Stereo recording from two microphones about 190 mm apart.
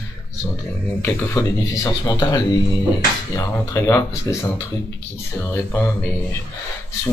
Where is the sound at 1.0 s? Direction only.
15° left (ahead or behind).